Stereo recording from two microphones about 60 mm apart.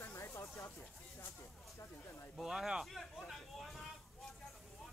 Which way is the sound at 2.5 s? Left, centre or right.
Centre.